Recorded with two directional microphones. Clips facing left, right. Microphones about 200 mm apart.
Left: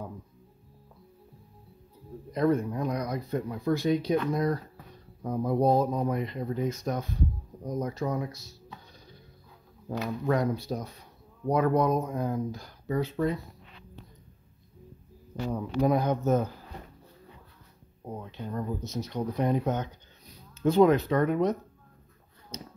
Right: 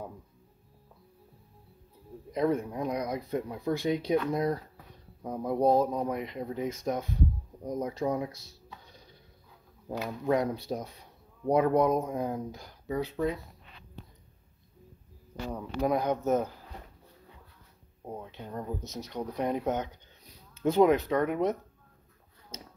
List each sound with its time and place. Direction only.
2.3 s speech: 10° right (ahead or behind)
5.2 s speech: 10° right (ahead or behind)
9.8 s speech: 15° right (ahead or behind)
12.8 s speech: 5° right (ahead or behind)
15.5 s speech: 5° right (ahead or behind)
16.0 s speech: 15° right (ahead or behind)
18.0 s speech: 10° right (ahead or behind)